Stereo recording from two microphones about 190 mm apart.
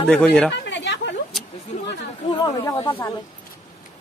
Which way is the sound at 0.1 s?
5° left (ahead or behind).